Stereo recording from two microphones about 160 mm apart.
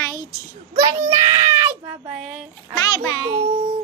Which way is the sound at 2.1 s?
5° right (ahead or behind).